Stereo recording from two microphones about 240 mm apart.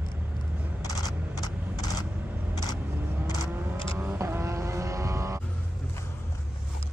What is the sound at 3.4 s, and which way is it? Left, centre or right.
Vehicle, centre.